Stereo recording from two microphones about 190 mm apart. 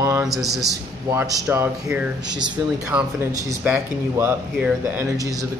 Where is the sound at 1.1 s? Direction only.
15° right (ahead or behind).